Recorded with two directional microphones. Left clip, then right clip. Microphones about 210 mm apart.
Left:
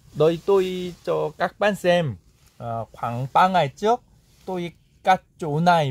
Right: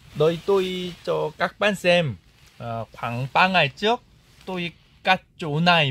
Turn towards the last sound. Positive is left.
turn(degrees=40)  # may be behind; listen again after turning